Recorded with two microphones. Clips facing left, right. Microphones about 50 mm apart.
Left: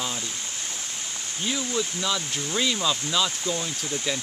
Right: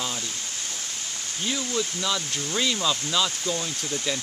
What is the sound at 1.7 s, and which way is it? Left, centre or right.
Speech, centre.